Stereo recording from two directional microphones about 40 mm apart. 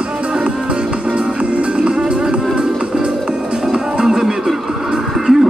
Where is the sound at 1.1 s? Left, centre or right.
Right.